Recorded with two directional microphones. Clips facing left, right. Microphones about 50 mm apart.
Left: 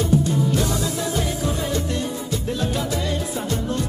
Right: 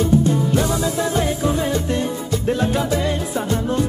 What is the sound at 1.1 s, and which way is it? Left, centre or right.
Music, right.